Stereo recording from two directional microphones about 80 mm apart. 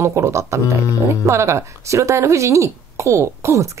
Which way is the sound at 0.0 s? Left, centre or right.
Right.